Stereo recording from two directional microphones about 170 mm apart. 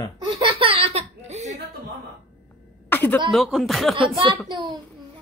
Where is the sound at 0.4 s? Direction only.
30° right (ahead or behind).